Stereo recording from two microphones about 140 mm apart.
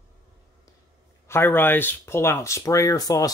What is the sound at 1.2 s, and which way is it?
Speech, 15° left (ahead or behind).